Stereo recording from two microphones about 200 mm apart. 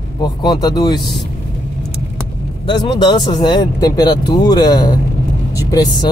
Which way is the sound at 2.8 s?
20° left (ahead or behind).